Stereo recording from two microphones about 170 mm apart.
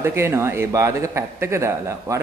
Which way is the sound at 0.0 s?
15° right (ahead or behind).